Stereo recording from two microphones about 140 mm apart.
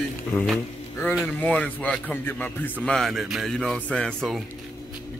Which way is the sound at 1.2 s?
10° left (ahead or behind).